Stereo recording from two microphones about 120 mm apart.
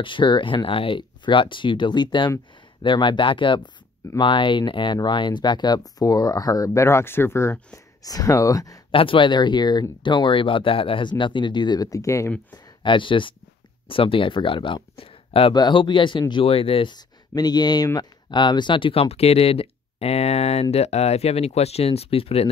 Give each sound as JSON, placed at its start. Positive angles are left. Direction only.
{"t": 0.0, "sound": "speech", "side_deg": 45}
{"t": 8.9, "sound": "speech", "side_deg": 45}
{"t": 12.8, "sound": "speech", "side_deg": 45}
{"t": 15.5, "sound": "speech", "side_deg": 40}
{"t": 17.3, "sound": "speech", "side_deg": 35}